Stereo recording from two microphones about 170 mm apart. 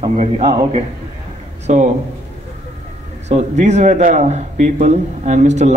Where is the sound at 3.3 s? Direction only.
40° right (ahead or behind).